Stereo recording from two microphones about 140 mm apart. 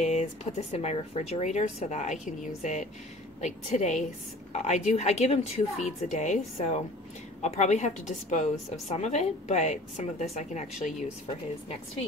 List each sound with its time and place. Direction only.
0.0 s a woman's voice: 55° left (ahead or behind)